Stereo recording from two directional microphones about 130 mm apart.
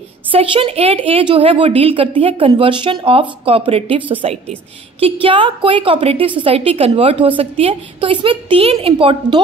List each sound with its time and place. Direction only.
0.3 s a woman's voice: 45° right (ahead or behind)